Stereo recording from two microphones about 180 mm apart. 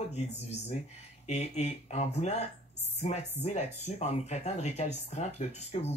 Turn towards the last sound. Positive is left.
turn(degrees=35)  # may be behind; listen again after turning